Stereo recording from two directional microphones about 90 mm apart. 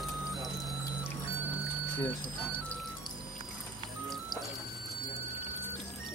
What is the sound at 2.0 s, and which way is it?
Music, 15° left (ahead or behind).